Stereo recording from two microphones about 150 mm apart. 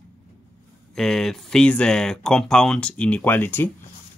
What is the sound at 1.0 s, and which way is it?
Speech, 5° left (ahead or behind).